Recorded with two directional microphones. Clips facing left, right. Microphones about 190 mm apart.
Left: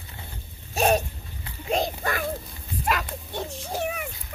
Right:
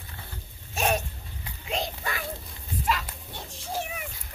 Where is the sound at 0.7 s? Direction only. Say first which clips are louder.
Left 5 dB; 35° left (ahead or behind).